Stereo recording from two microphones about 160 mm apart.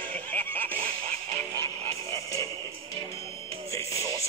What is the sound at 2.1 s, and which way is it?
Music, 20° left (ahead or behind).